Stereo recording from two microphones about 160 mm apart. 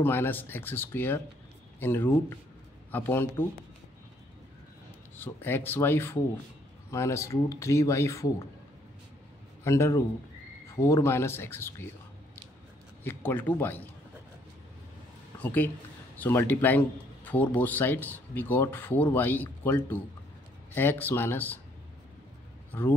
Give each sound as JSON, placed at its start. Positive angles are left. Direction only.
{"t": 0.0, "sound": "speech", "side_deg": 15}
{"t": 5.1, "sound": "speech", "side_deg": 15}
{"t": 9.7, "sound": "speech", "side_deg": 20}
{"t": 13.0, "sound": "speech", "side_deg": 15}
{"t": 15.3, "sound": "speech", "side_deg": 10}
{"t": 22.7, "sound": "speech", "side_deg": 15}